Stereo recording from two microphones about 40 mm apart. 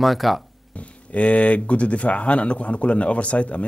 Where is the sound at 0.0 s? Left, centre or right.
Centre.